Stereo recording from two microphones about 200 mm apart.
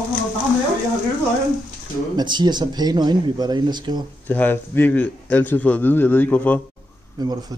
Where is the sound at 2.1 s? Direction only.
20° right (ahead or behind).